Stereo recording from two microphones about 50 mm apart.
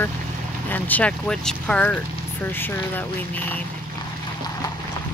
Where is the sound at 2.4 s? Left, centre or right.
Left.